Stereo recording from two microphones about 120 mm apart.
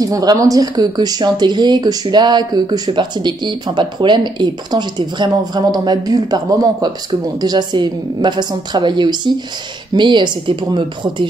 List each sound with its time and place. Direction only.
0.0 s speech: 30° right (ahead or behind)